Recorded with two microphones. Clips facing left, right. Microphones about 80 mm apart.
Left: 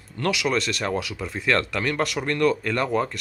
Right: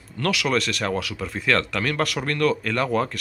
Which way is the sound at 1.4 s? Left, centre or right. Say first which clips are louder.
Even; left.